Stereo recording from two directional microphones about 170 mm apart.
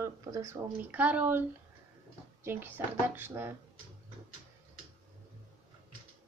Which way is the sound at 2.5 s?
10° right (ahead or behind).